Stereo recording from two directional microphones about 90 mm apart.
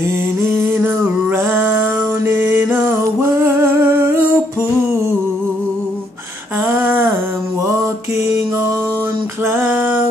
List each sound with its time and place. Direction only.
0.4 s a sound: 25° right (ahead or behind)
6.7 s humming: 25° right (ahead or behind)
9.5 s music: 25° right (ahead or behind)